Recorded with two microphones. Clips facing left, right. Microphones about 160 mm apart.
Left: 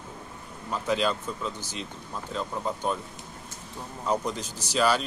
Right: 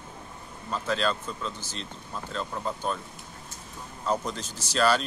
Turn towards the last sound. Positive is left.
turn(degrees=10)  # may be behind; listen again after turning